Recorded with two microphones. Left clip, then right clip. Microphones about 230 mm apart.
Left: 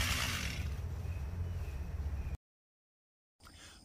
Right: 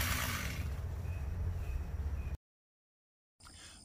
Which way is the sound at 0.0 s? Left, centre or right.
Centre.